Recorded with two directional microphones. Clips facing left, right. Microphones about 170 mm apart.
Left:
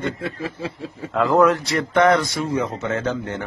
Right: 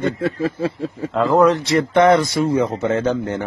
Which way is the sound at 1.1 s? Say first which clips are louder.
Right 2 dB; 20° right (ahead or behind).